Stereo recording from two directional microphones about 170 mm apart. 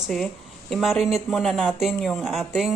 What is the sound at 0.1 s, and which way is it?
Speech, centre (ahead or behind).